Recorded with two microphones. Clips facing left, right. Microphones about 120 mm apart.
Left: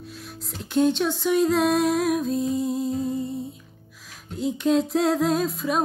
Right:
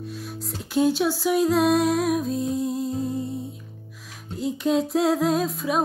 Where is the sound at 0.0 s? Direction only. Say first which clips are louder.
Right 5 dB; centre (ahead or behind).